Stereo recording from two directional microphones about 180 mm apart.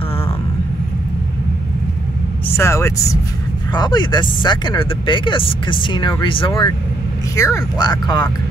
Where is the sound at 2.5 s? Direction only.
15° left (ahead or behind).